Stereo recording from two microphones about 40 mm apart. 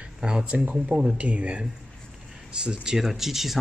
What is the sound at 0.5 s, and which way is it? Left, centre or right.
Speech, right.